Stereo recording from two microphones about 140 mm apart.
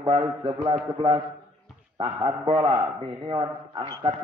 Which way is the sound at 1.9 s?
30° right (ahead or behind).